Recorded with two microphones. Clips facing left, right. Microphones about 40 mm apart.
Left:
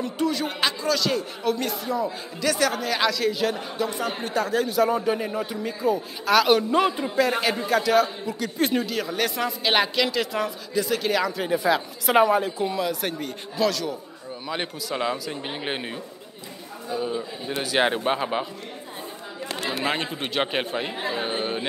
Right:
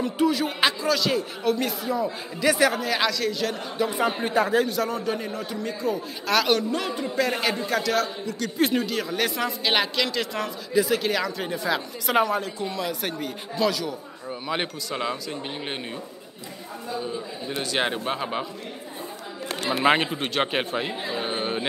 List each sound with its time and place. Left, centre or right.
0.0 s a man's voice: centre
2.4 s a man's voice: centre
3.7 s a man's voice: centre
4.0 s speech: centre
4.6 s a man's voice: centre
6.7 s a man's voice: left
7.2 s a man's voice: centre
14.9 s a man's voice: centre
17.5 s a man's voice: centre
19.7 s speech: centre
20.2 s a man's voice: centre